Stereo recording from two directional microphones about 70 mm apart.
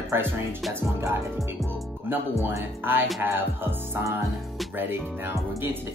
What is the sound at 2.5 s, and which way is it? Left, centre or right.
Speech, right.